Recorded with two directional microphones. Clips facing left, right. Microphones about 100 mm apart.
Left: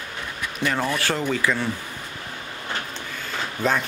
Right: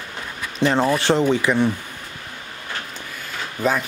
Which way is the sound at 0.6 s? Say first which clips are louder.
Right 6 dB; 25° right (ahead or behind).